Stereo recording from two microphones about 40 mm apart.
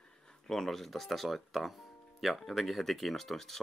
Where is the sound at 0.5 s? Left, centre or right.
Centre.